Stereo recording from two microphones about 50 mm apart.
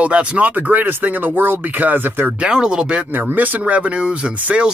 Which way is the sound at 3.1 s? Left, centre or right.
Right.